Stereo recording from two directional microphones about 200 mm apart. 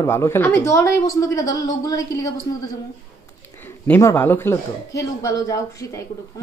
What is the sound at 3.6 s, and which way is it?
Speech, 10° left (ahead or behind).